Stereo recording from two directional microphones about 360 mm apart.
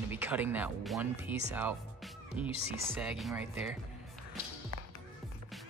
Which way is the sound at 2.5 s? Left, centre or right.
Right.